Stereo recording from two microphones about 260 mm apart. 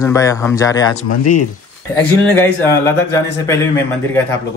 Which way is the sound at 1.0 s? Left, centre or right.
Left.